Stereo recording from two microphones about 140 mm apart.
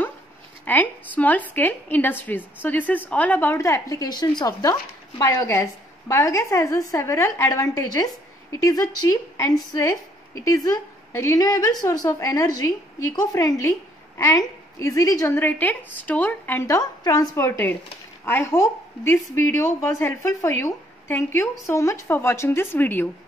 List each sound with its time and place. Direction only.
0.7 s a woman's voice: 10° left (ahead or behind)